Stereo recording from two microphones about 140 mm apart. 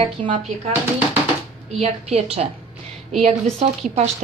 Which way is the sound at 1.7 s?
50° right (ahead or behind).